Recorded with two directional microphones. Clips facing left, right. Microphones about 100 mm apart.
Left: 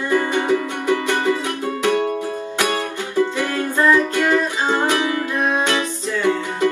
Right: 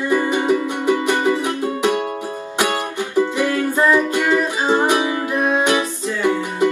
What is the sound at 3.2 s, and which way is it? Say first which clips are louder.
Music: right 2 dB; 20° right (ahead or behind).